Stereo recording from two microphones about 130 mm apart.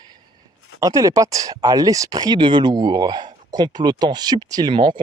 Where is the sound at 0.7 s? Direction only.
25° right (ahead or behind).